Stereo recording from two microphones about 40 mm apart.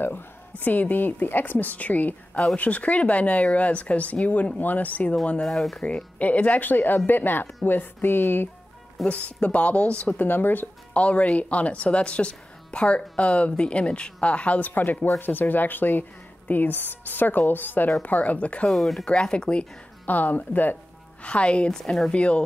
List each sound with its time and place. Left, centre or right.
0.6 s speech: left
5.4 s speech: centre
6.1 s speech: left
9.0 s speech: left
10.1 s speech: left
10.9 s speech: left
14.7 s speech: left
18.0 s speech: left
18.7 s speech: centre
19.0 s speech: left
20.1 s speech: left
21.2 s speech: left
21.7 s speech: centre
22.1 s speech: left